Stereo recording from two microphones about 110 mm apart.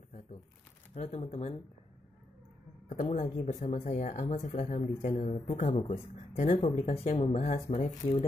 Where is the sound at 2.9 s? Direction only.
80° left.